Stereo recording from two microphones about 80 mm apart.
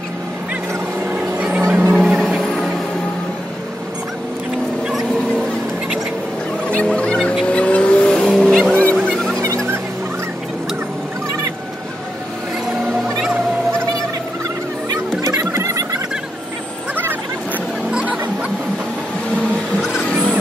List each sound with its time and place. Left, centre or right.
1.0 s vehicle: centre
1.6 s music: right
2.0 s music: centre
6.7 s fowl: centre
7.4 s vehicle: centre
8.4 s music: centre
9.4 s music: right
15.2 s music: right
16.9 s vehicle: right
17.9 s a sound: centre